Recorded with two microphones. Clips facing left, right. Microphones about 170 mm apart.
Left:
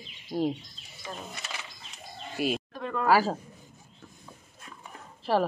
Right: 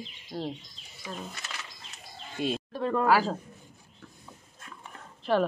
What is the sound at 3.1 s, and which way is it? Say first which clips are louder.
Speech: left 2 dB; 5° left (ahead or behind).